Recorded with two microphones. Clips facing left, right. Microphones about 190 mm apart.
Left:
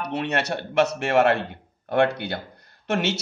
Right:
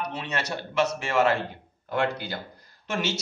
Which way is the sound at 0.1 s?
60° left (ahead or behind).